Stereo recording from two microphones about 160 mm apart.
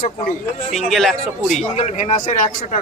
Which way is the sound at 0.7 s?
Centre (ahead or behind).